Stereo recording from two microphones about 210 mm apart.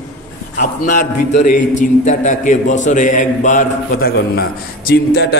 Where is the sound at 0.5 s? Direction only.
40° left (ahead or behind).